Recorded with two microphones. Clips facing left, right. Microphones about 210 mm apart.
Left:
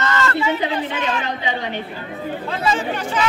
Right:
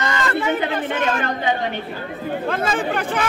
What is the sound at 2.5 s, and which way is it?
Speech, 55° right (ahead or behind).